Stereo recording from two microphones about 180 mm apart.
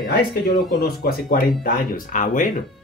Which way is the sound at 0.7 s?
55° left (ahead or behind).